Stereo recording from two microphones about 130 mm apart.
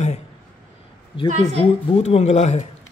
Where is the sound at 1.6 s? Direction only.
55° left (ahead or behind).